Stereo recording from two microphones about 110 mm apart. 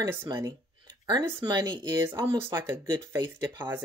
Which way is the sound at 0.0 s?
25° right (ahead or behind).